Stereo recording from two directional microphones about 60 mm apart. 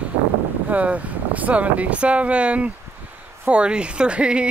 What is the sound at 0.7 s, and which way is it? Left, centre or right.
Speech, right.